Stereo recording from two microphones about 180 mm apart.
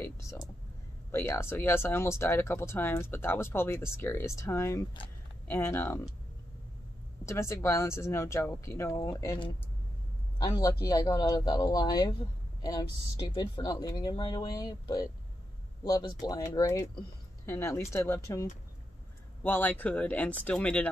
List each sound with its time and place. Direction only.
0.0 s speech: 15° left (ahead or behind)
7.2 s speech: 15° left (ahead or behind)
13.3 s speech: 20° left (ahead or behind); by 20.9 s 5° left (ahead or behind)